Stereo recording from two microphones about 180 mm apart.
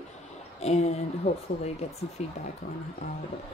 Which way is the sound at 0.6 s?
35° left (ahead or behind).